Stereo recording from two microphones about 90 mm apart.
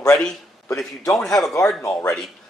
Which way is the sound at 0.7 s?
35° left (ahead or behind).